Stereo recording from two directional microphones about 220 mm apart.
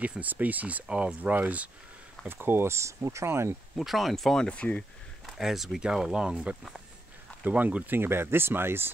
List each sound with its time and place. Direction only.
0.0 s speech: 5° right (ahead or behind)
3.7 s speech: centre (ahead or behind)